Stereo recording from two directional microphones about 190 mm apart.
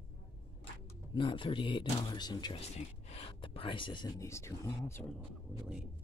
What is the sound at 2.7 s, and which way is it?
Speech, 30° left (ahead or behind).